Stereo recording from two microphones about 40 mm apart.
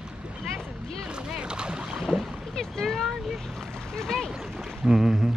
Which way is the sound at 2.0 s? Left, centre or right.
Centre.